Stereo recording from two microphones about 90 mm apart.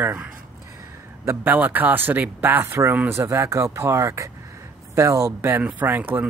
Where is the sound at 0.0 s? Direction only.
20° right (ahead or behind); by 5.3 s 35° right (ahead or behind).